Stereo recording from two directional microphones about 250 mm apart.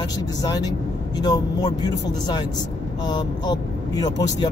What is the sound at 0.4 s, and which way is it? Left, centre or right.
Speech, centre.